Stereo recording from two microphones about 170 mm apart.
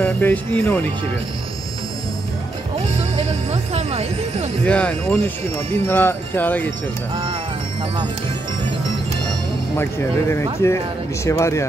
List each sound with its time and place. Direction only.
0.0 s speech: 10° left (ahead or behind)
3.7 s speech: 40° right (ahead or behind)
4.6 s speech: 5° left (ahead or behind)
10.6 s speech: 15° left (ahead or behind)